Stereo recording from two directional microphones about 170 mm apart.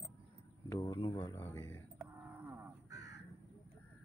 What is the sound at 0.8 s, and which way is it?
Speech, 15° left (ahead or behind).